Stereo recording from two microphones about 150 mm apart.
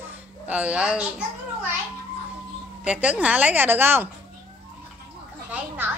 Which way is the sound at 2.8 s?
10° right (ahead or behind).